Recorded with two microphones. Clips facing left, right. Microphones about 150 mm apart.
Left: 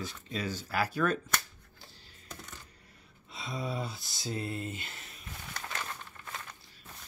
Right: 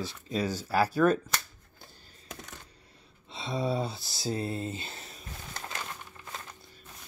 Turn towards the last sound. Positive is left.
turn(degrees=-20)  # may be behind; listen again after turning